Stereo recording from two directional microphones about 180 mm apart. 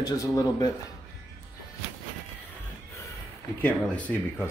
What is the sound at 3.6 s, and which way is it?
Speech, 5° left (ahead or behind).